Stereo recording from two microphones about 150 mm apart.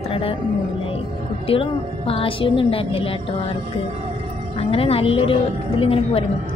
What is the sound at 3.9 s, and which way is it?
Whale vocalization, 45° right (ahead or behind).